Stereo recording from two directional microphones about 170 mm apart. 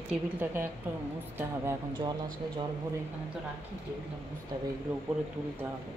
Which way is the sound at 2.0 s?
25° right (ahead or behind).